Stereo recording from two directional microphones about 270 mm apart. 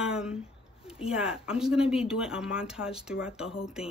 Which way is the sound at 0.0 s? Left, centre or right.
Centre.